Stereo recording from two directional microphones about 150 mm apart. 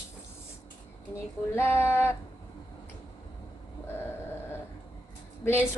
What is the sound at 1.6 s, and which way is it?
Speech, 15° left (ahead or behind).